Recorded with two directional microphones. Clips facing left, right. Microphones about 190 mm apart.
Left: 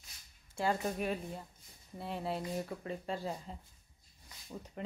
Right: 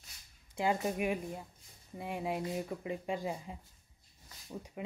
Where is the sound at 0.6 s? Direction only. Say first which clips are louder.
Right 2 dB; 15° right (ahead or behind).